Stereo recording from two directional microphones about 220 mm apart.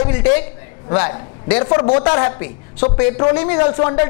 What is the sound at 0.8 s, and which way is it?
A woman's voice, 20° left (ahead or behind).